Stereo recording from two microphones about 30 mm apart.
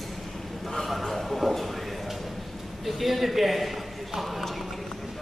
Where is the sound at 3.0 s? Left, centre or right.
Centre.